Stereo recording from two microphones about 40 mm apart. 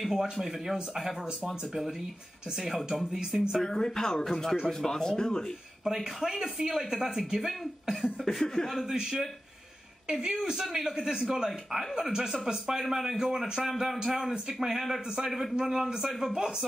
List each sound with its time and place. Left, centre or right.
0.0 s speech: centre
3.6 s speech: centre
5.9 s a man's voice: centre
7.3 s speech: centre
8.3 s speech: centre
10.0 s a man's voice: centre